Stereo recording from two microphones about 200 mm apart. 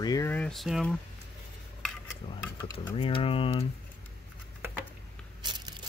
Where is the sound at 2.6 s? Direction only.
20° left (ahead or behind).